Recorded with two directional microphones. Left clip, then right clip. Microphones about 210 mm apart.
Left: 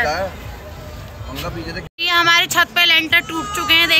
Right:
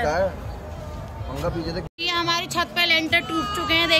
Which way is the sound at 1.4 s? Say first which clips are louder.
Right 1 dB; 50° right (ahead or behind).